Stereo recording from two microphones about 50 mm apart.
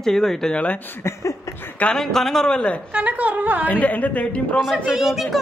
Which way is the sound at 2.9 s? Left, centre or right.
Right.